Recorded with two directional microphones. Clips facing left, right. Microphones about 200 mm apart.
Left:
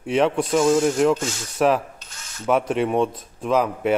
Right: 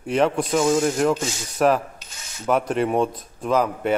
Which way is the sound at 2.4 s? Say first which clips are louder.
Left 1 dB; centre (ahead or behind).